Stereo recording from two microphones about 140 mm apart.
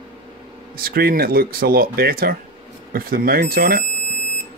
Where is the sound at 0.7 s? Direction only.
90° right.